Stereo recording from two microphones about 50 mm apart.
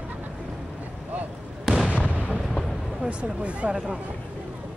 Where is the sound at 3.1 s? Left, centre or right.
Right.